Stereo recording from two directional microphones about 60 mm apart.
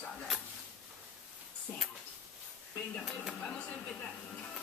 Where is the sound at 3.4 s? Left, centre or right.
Centre.